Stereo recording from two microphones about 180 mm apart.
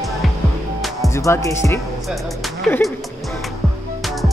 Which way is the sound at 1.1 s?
15° left (ahead or behind).